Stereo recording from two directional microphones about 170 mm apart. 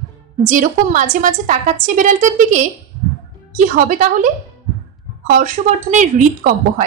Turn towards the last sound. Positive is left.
turn(degrees=-45)  # may be behind; listen again after turning